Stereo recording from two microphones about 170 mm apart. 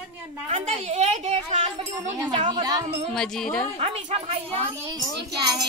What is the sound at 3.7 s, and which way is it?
Speech, 35° right (ahead or behind).